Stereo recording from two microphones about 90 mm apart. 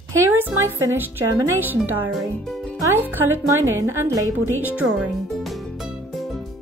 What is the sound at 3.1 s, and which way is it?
Speech, 25° right (ahead or behind).